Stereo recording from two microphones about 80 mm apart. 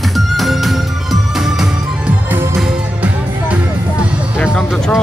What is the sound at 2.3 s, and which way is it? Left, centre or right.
Music, right.